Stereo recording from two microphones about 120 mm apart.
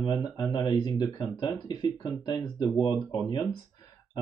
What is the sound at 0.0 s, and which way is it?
Speech, 35° left (ahead or behind).